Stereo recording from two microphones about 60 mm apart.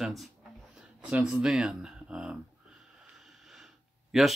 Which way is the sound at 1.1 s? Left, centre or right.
Centre.